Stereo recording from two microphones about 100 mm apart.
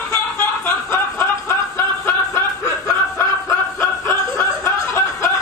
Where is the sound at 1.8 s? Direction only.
25° left (ahead or behind).